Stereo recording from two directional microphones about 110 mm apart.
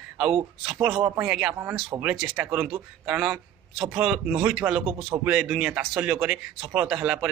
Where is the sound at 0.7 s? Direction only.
10° right (ahead or behind).